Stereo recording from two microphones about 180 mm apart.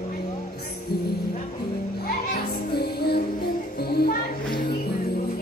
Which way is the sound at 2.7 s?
60° left (ahead or behind).